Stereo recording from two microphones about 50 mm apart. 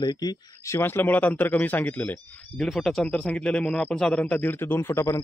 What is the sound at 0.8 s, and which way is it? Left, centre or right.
Speech, left.